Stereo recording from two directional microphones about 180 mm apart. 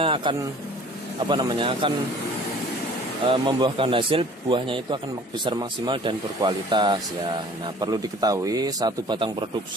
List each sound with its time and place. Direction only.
0.0 s speech: 30° right (ahead or behind)
3.3 s speech: 25° right (ahead or behind)